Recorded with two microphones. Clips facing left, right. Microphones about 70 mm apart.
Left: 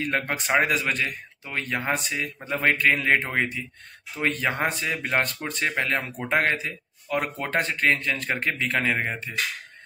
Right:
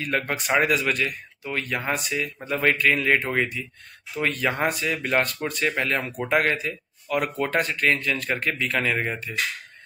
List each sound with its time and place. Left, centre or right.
0.0 s a man's voice: left